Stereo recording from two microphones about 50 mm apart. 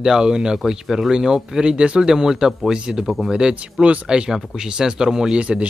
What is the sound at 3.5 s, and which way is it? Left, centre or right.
Speech, right.